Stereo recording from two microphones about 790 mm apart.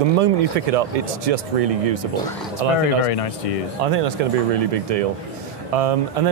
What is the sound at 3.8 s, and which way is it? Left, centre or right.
Speech, right.